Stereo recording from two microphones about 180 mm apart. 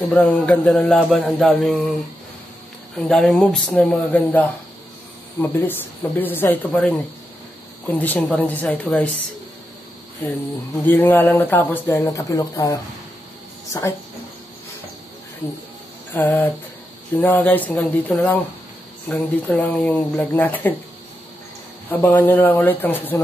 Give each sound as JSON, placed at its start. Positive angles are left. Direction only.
{"t": 0.1, "sound": "a man's voice", "side_deg": 10}
{"t": 3.0, "sound": "a man's voice", "side_deg": 0}
{"t": 10.9, "sound": "speech", "side_deg": 10}
{"t": 16.1, "sound": "speech", "side_deg": 15}
{"t": 22.0, "sound": "speech", "side_deg": 10}